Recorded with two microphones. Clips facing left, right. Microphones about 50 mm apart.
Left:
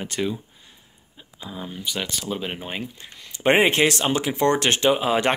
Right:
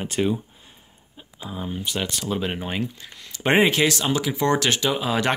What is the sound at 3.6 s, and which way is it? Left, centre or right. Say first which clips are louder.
Speech: left 1 dB; left.